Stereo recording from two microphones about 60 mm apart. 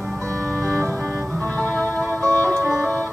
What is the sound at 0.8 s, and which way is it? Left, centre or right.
Organ, right.